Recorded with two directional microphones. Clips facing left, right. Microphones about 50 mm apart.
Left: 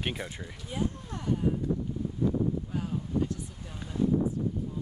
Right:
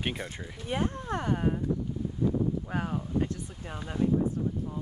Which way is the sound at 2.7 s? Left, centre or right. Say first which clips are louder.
Right 2 dB; right.